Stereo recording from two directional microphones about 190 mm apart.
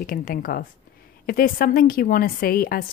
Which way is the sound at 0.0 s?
50° left (ahead or behind).